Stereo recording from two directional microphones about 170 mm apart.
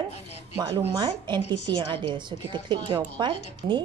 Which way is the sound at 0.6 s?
25° right (ahead or behind).